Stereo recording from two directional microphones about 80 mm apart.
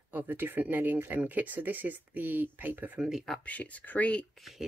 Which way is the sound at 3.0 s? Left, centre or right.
Centre.